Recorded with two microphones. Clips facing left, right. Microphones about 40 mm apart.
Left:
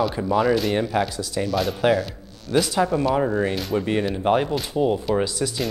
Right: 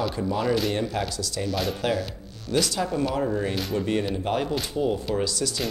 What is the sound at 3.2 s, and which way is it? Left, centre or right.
Speech, left.